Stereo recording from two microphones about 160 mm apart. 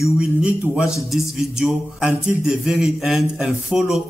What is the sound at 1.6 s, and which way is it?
Speech, 5° right (ahead or behind).